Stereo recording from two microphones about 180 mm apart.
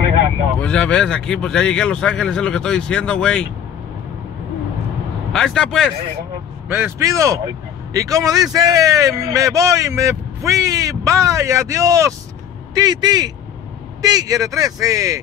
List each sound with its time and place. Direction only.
0.6 s speech: 5° left (ahead or behind)
5.3 s speech: 5° left (ahead or behind)
6.7 s speech: 15° right (ahead or behind)